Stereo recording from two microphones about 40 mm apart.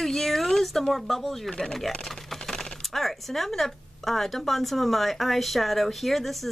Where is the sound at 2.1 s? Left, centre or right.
Centre.